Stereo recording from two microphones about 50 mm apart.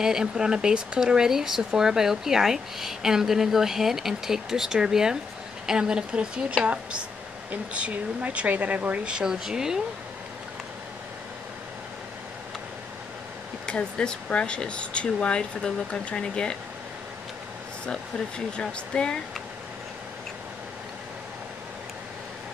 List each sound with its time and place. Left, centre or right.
0.0 s speech: centre
13.7 s speech: centre
18.6 s speech: centre